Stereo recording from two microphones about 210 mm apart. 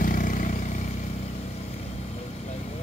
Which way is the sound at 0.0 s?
40° left (ahead or behind).